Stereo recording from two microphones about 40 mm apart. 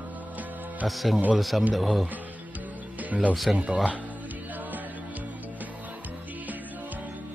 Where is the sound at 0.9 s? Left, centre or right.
Centre.